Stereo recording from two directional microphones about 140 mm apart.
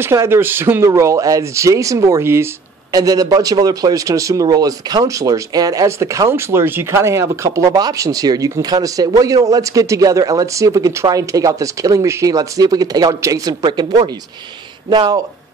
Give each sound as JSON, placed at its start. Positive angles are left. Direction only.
{"t": 0.0, "sound": "a man's voice", "side_deg": -20}